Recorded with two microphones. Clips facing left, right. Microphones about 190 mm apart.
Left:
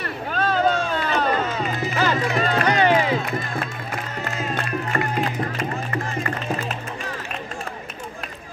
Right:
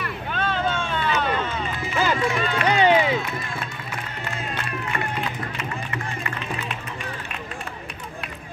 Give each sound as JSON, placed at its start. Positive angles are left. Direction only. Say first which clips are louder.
{"t": 0.0, "sound": "run", "louder": "left 3 dB", "side_deg": 40}
{"t": 3.5, "sound": "music", "louder": "left 4 dB", "side_deg": 45}